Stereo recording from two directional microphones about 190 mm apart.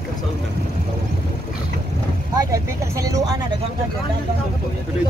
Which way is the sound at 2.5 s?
20° right (ahead or behind).